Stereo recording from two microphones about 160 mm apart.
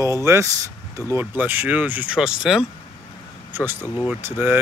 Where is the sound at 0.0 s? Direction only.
20° right (ahead or behind).